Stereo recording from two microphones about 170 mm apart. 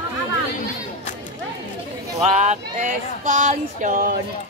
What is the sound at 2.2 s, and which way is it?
Speech, 45° right (ahead or behind).